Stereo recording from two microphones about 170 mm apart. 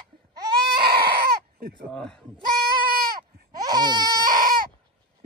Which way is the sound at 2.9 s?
60° right (ahead or behind).